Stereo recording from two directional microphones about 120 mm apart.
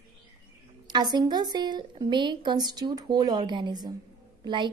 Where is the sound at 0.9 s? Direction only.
35° right (ahead or behind).